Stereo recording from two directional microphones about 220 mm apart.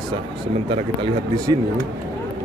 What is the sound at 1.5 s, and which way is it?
Speech, 15° right (ahead or behind).